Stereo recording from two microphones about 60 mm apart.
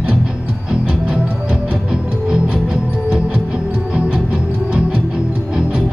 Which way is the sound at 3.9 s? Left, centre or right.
Centre.